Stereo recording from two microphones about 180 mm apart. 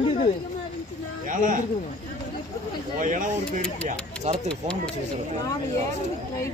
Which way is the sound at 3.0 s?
45° right (ahead or behind).